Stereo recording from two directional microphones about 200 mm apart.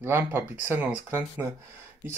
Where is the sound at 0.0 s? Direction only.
10° right (ahead or behind).